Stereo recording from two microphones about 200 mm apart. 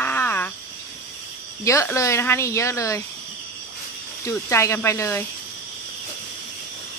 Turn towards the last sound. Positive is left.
turn(degrees=15)  # may be behind; listen again after turning